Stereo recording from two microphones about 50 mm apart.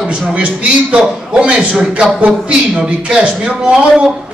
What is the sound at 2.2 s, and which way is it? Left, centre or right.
A man's voice, right.